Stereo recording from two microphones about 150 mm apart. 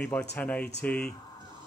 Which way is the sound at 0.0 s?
10° left (ahead or behind).